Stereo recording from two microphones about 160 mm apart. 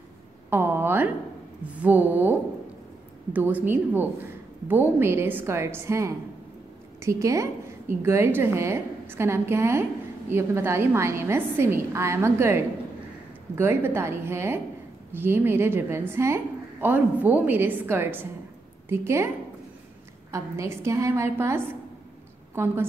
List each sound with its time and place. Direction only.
0.5 s a sound: 15° right (ahead or behind)
1.8 s a woman's voice: 10° right (ahead or behind)
3.3 s a woman's voice: 10° right (ahead or behind)